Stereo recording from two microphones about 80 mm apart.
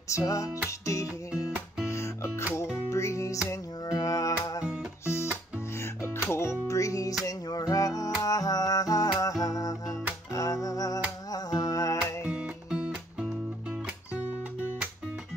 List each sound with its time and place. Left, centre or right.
0.1 s music: left
3.8 s music: left
7.2 s music: left
12.3 s music: centre